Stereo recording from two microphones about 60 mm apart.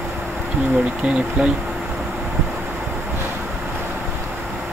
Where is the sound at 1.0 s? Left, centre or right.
Centre.